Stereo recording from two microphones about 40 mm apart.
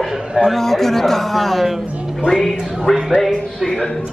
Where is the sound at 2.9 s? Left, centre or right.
Centre.